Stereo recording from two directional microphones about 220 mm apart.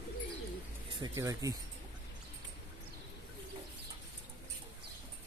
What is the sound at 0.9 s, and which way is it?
Speech, 15° right (ahead or behind).